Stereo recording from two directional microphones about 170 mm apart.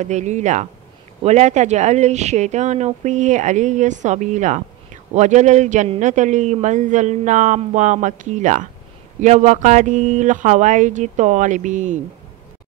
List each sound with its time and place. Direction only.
0.0 s a man's voice: 45° right (ahead or behind)